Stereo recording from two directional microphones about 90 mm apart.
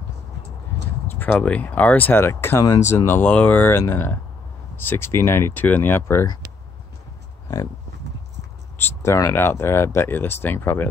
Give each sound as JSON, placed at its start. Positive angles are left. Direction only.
{"t": 1.1, "sound": "speech", "side_deg": 20}
{"t": 8.7, "sound": "speech", "side_deg": 35}